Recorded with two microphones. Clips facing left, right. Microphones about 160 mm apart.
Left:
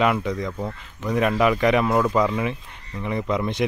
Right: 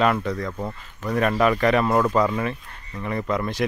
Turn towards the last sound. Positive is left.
turn(degrees=20)  # may be behind; listen again after turning